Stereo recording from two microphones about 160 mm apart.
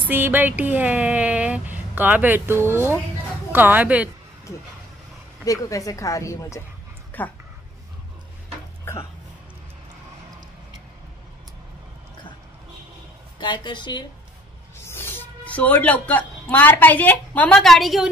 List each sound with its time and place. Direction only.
0.1 s speech: 15° right (ahead or behind)
5.4 s a woman's voice: 20° left (ahead or behind)
13.4 s a woman's voice: 30° left (ahead or behind)
14.9 s speech: 15° left (ahead or behind)